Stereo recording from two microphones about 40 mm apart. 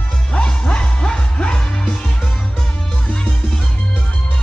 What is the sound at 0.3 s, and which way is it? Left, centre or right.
Music, left.